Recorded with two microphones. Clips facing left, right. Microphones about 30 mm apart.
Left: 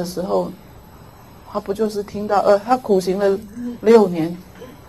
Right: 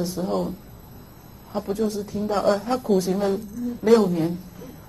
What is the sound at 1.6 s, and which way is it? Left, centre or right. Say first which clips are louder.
Speech: left 4 dB; left.